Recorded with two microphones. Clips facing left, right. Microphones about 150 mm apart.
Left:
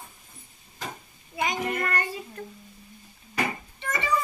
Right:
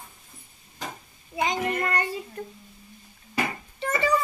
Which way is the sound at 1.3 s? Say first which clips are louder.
Right 2 dB; 25° right (ahead or behind).